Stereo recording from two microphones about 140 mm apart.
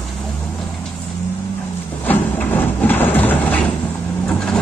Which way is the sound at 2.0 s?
15° left (ahead or behind).